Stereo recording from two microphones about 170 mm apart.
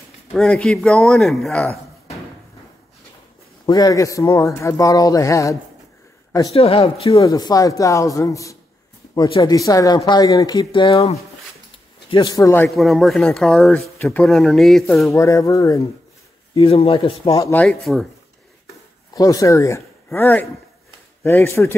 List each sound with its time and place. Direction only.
0.3 s speech: 5° left (ahead or behind)
3.6 s speech: 20° left (ahead or behind)
6.5 s speech: 35° left (ahead or behind)
7.1 s a man's voice: 20° left (ahead or behind)
12.4 s speech: 15° left (ahead or behind)
12.6 s speech: centre (ahead or behind)
15.0 s speech: 15° left (ahead or behind)
16.5 s speech: 35° left (ahead or behind)
17.4 s speech: 10° left (ahead or behind)
19.1 s speech: 20° left (ahead or behind)